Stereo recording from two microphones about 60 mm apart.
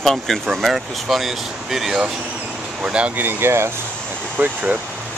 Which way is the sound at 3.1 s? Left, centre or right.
Right.